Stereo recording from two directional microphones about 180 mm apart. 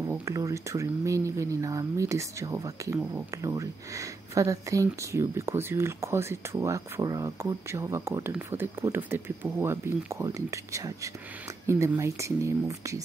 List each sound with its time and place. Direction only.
0.0 s speech: 15° right (ahead or behind)